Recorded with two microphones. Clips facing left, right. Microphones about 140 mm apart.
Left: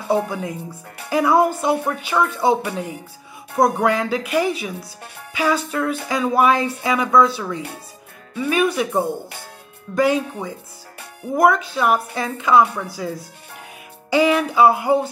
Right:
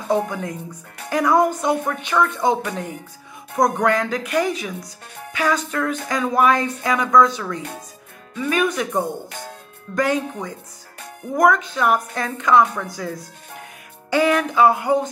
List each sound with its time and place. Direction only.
0.1 s speech: 5° left (ahead or behind)